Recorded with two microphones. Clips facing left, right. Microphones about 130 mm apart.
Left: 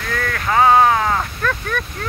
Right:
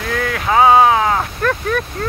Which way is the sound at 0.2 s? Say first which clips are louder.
Right 3 dB; 10° right (ahead or behind).